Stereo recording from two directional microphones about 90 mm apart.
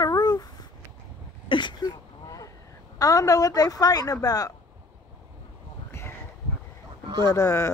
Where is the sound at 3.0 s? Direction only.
40° left (ahead or behind).